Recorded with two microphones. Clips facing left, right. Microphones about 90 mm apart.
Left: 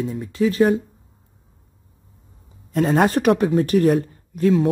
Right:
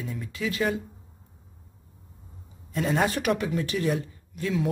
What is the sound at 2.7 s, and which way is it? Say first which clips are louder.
Speech: left 8 dB; 50° left (ahead or behind).